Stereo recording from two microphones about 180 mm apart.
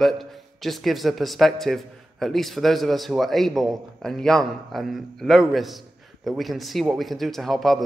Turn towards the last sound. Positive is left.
turn(degrees=0)  # may be behind; listen again after turning